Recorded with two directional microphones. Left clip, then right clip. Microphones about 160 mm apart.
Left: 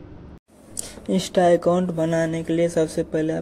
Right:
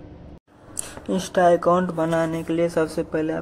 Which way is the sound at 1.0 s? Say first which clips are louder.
Even; 25° left (ahead or behind).